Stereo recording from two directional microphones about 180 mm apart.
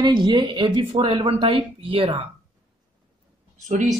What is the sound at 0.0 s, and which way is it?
A man's voice, 25° right (ahead or behind).